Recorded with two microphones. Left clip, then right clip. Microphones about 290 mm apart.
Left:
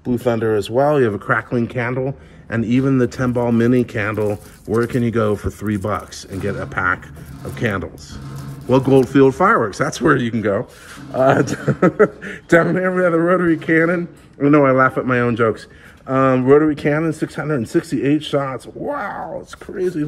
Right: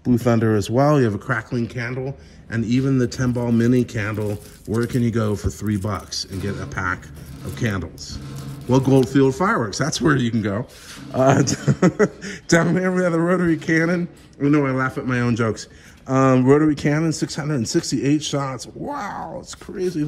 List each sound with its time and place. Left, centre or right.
0.0 s speech: right
1.1 s a man's voice: centre
6.3 s speech: centre
6.7 s a man's voice: centre
8.6 s a man's voice: centre
11.1 s a man's voice: right